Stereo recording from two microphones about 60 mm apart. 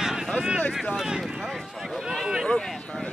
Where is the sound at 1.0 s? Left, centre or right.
Centre.